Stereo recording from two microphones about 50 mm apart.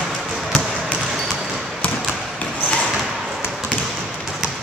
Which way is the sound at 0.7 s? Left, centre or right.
Right.